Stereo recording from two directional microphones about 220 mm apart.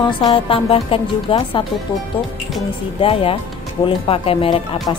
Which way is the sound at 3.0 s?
25° left (ahead or behind).